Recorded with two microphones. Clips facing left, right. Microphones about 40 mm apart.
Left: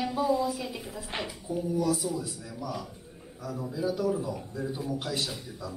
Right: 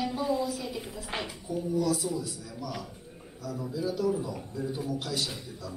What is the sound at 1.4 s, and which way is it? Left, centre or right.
Speech, left.